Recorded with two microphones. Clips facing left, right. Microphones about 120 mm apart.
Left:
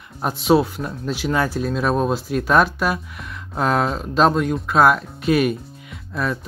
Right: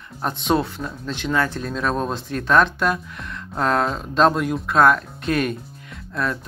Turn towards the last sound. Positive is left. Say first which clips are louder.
# left 1 dB
turn(degrees=0)  # may be behind; listen again after turning